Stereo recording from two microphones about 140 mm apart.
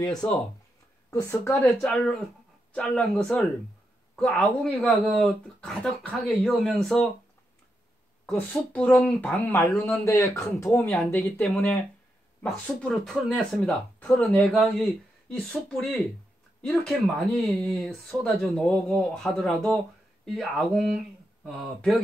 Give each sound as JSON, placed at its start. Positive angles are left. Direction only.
{"t": 0.2, "sound": "speech", "side_deg": 10}
{"t": 1.1, "sound": "speech", "side_deg": 20}
{"t": 1.8, "sound": "speech", "side_deg": 5}
{"t": 8.3, "sound": "speech", "side_deg": 10}
{"t": 9.7, "sound": "speech", "side_deg": 0}
{"t": 10.0, "sound": "speech", "side_deg": 20}
{"t": 12.6, "sound": "speech", "side_deg": 5}